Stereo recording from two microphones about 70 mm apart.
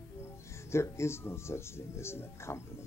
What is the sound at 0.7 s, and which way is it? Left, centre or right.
Speech, left.